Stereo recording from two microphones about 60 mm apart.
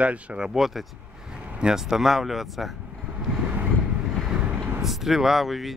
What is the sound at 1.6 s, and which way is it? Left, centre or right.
Speech, centre.